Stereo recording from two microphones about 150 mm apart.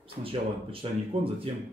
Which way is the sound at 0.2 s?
40° right (ahead or behind).